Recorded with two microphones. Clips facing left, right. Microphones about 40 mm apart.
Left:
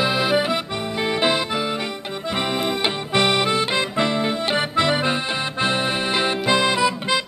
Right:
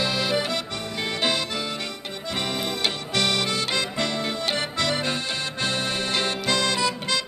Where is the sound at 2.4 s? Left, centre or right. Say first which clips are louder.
Left 4 dB; centre.